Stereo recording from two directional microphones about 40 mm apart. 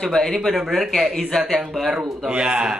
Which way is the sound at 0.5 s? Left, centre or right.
Centre.